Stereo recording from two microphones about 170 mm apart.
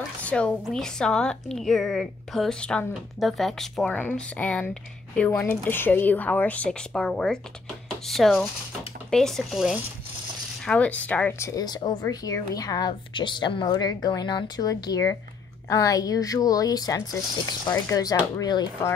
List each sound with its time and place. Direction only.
0.2 s a woman's voice: 5° left (ahead or behind); by 18.7 s 25° left (ahead or behind)